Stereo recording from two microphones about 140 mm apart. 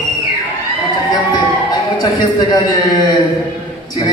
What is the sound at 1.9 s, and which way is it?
A man's voice, 35° left (ahead or behind).